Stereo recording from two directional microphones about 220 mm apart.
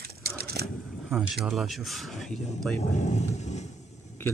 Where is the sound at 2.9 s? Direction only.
30° left (ahead or behind).